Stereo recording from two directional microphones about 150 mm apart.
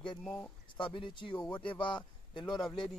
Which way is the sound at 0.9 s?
35° left (ahead or behind).